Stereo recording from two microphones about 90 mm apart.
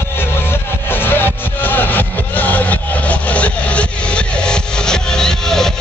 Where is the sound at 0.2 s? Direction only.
25° left (ahead or behind).